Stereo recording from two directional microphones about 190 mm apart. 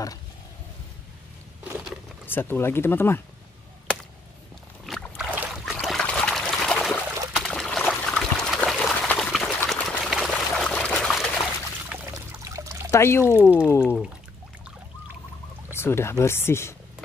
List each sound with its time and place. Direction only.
2.2 s speech: 10° left (ahead or behind)
4.8 s boat: centre (ahead or behind)
5.3 s trickle: 5° right (ahead or behind)
11.9 s pour: 15° right (ahead or behind)
12.9 s speech: 15° left (ahead or behind)
13.2 s speech: 10° right (ahead or behind)
13.7 s speech: 10° left (ahead or behind)
15.7 s speech: 15° left (ahead or behind)